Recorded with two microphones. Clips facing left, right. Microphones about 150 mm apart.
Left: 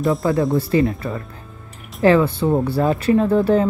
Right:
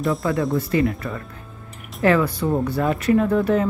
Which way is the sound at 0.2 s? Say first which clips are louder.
Left 3 dB; 25° left (ahead or behind).